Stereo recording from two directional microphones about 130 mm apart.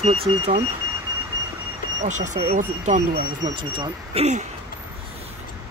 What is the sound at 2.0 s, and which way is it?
Speech, 70° right (ahead or behind).